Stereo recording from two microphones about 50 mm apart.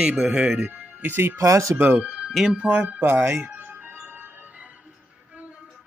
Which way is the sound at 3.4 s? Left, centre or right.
Right.